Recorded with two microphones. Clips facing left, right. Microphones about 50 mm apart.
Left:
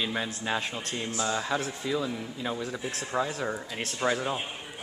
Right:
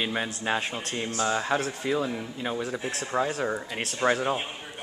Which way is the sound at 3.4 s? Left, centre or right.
Centre.